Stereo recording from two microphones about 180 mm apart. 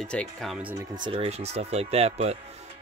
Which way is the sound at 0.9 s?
30° right (ahead or behind).